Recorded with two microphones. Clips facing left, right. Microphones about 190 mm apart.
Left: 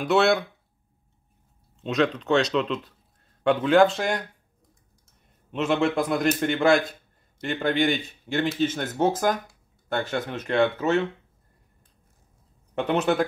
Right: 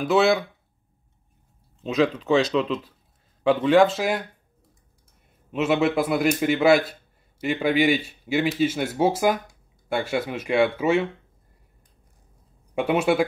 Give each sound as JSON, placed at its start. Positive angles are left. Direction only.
{"t": 0.0, "sound": "speech", "side_deg": 0}
{"t": 1.8, "sound": "speech", "side_deg": -5}
{"t": 5.5, "sound": "a man's voice", "side_deg": -5}
{"t": 12.7, "sound": "a man's voice", "side_deg": -10}